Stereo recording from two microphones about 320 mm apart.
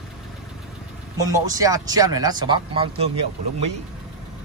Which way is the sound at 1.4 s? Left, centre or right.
Centre.